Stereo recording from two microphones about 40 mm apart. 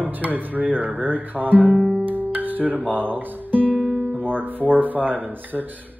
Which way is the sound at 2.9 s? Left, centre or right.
Right.